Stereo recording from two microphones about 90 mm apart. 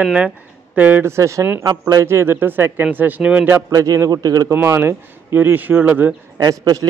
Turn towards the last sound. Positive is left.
turn(degrees=-45)  # may be behind; listen again after turning